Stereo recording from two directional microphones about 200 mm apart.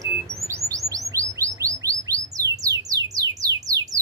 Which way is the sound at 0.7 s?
15° right (ahead or behind).